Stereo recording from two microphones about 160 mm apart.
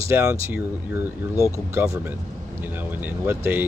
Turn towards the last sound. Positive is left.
turn(degrees=-15)  # may be behind; listen again after turning